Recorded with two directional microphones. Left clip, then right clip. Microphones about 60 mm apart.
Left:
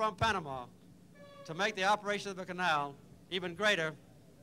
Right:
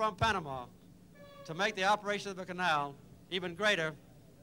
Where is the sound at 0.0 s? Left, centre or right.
Left.